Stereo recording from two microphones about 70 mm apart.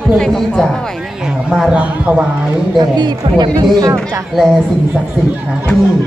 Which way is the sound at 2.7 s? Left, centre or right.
Right.